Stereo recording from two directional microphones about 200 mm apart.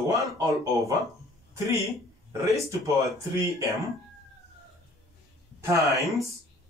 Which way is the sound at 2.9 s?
15° right (ahead or behind).